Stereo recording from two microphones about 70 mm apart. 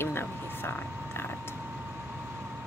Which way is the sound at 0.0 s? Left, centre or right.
Left.